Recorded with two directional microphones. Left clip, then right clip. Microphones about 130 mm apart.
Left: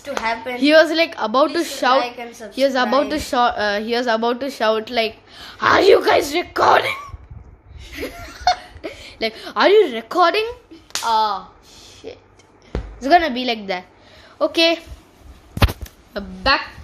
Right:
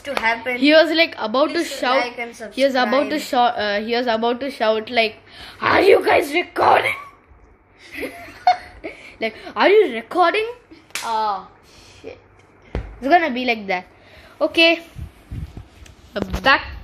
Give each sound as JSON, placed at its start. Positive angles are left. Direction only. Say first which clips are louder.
{"t": 0.2, "sound": "a woman's voice", "louder": "right 2 dB", "side_deg": 0}
{"t": 2.0, "sound": "a woman's voice", "louder": "left 1 dB", "side_deg": -10}
{"t": 2.3, "sound": "a woman's voice", "louder": "even", "side_deg": 0}
{"t": 7.9, "sound": "laughter", "louder": "even", "side_deg": 10}
{"t": 9.2, "sound": "a woman's voice", "louder": "left 1 dB", "side_deg": 15}
{"t": 11.1, "sound": "a woman's voice", "louder": "left 3 dB", "side_deg": 25}
{"t": 13.0, "sound": "a woman's voice", "louder": "left 1 dB", "side_deg": 5}
{"t": 16.1, "sound": "a woman's voice", "louder": "right 3 dB", "side_deg": -10}